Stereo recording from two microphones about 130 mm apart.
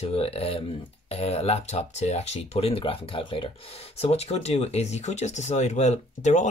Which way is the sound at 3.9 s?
50° left (ahead or behind).